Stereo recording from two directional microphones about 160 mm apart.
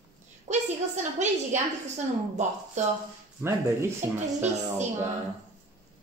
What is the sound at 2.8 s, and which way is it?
Speech, 45° right (ahead or behind).